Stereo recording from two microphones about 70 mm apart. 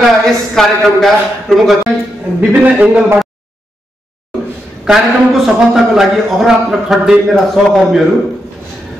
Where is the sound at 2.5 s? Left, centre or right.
Right.